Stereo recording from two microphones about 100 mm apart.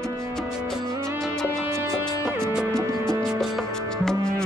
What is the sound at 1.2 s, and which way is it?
Music, 5° left (ahead or behind).